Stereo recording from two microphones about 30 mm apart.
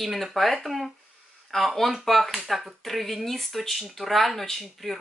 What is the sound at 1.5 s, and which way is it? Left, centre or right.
Speech, centre.